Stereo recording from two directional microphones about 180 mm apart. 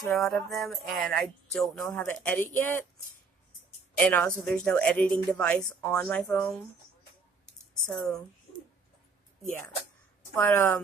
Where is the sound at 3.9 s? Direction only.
10° left (ahead or behind).